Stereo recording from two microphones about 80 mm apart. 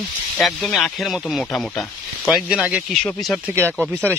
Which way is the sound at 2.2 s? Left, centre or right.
Centre.